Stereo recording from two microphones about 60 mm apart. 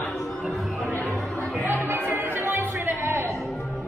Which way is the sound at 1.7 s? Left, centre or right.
Right.